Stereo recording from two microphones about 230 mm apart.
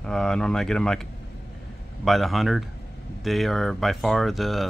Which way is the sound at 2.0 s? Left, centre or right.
Centre.